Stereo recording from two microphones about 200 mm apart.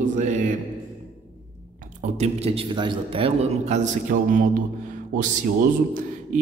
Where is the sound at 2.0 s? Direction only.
35° right (ahead or behind).